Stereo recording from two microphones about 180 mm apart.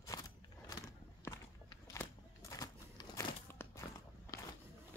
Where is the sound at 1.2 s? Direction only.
15° left (ahead or behind).